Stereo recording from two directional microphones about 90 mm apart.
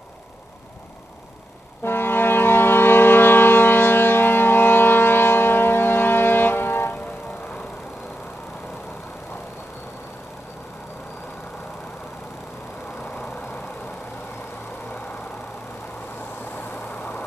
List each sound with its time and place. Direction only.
1.8 s civil defense siren: 25° left (ahead or behind)
13.0 s vehicle: 20° left (ahead or behind)
14.9 s vehicle: 20° left (ahead or behind)
16.5 s vehicle: 20° left (ahead or behind)